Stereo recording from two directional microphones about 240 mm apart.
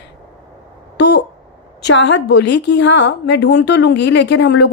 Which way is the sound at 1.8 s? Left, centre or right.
Left.